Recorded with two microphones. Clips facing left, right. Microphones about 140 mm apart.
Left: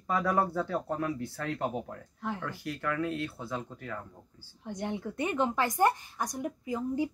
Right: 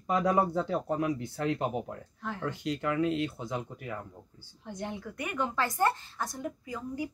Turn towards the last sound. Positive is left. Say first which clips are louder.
# left 5 dB
turn(degrees=20)  # may be behind; listen again after turning